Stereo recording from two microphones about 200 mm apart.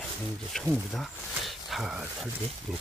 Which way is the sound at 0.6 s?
Centre (ahead or behind).